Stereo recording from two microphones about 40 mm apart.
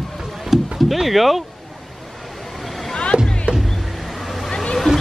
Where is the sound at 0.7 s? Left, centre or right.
Centre.